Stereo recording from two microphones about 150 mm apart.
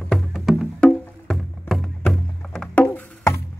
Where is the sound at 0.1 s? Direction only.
Centre (ahead or behind).